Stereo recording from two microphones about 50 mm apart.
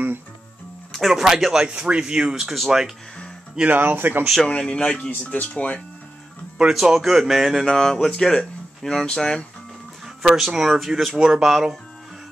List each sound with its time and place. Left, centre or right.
0.9 s speech: centre
2.3 s speech: centre
3.6 s speech: right
4.6 s speech: left
6.7 s speech: centre
7.6 s speech: centre
10.0 s speech: centre